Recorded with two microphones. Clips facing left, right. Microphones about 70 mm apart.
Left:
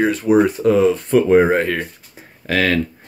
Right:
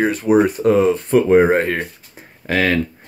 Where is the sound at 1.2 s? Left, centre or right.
Centre.